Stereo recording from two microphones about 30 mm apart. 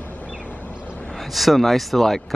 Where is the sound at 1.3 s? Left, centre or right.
Centre.